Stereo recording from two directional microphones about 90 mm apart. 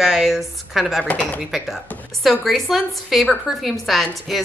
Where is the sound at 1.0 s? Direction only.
15° left (ahead or behind).